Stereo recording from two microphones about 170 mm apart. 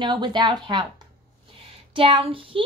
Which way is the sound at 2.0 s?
30° right (ahead or behind).